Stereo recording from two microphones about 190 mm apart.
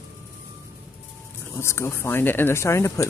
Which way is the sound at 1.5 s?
15° left (ahead or behind).